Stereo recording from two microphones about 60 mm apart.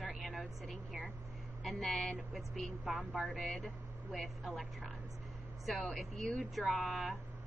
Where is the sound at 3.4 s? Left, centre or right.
Centre.